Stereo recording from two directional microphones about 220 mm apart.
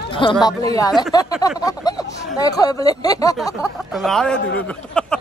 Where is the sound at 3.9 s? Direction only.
Centre (ahead or behind).